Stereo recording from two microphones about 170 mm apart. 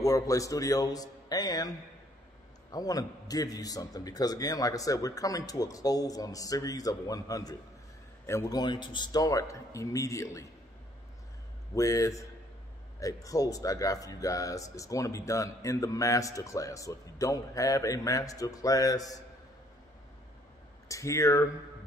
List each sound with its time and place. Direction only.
0.0 s speech: 20° left (ahead or behind)
2.7 s speech: 20° left (ahead or behind)
11.7 s speech: 20° left (ahead or behind)
20.9 s speech: 20° left (ahead or behind)